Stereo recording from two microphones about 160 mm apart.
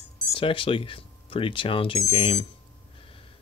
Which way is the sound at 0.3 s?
35° left (ahead or behind).